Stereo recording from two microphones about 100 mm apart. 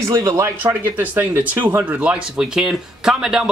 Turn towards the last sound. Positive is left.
turn(degrees=-5)  # may be behind; listen again after turning